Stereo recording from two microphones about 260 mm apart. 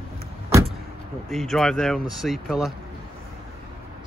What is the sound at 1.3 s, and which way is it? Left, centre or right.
Speech, centre.